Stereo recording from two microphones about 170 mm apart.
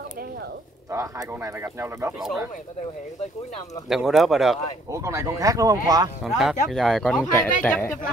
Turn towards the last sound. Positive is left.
turn(degrees=10)  # may be behind; listen again after turning